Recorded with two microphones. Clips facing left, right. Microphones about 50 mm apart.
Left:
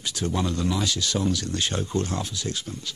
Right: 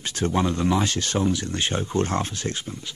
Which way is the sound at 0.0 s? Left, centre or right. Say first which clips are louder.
Right 4 dB; right.